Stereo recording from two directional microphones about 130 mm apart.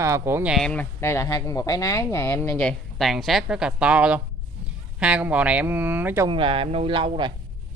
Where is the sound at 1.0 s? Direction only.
20° left (ahead or behind).